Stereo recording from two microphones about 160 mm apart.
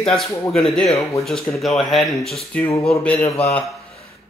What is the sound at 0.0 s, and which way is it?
Speech, centre (ahead or behind).